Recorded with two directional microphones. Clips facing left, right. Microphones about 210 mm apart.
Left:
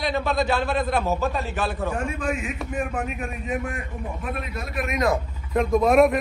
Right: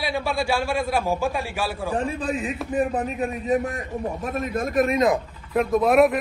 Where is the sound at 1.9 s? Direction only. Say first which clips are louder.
Right 2 dB; 35° right (ahead or behind).